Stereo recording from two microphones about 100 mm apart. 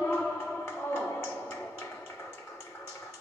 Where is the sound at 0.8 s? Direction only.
20° left (ahead or behind).